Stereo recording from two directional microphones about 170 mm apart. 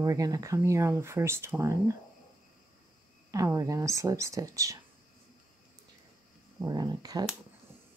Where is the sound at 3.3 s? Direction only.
20° right (ahead or behind).